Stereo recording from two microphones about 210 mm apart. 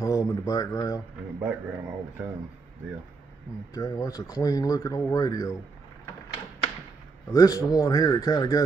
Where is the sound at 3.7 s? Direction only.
15° left (ahead or behind).